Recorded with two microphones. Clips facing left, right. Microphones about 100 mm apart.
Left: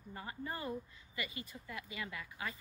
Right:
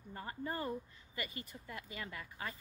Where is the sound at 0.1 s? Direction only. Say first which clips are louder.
Right 2 dB; 40° right (ahead or behind).